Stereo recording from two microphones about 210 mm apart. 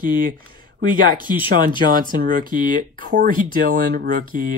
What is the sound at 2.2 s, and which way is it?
Speech, 40° right (ahead or behind).